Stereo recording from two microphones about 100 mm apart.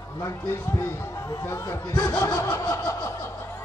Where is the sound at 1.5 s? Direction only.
30° left (ahead or behind).